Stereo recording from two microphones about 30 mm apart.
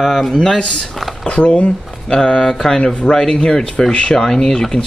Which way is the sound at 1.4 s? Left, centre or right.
Left.